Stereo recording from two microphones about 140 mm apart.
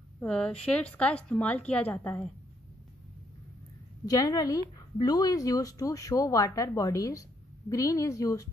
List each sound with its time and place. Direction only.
0.2 s a woman's voice: 5° left (ahead or behind)
4.0 s a woman's voice: 25° left (ahead or behind)